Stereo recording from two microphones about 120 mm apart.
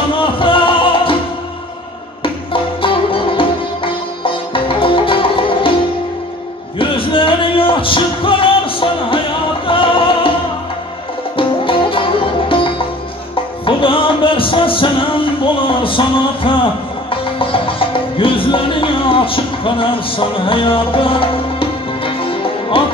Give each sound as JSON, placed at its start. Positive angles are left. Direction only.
{"t": 0.1, "sound": "music", "side_deg": 45}
{"t": 2.2, "sound": "music", "side_deg": 45}
{"t": 6.8, "sound": "music", "side_deg": 45}
{"t": 11.3, "sound": "music", "side_deg": 45}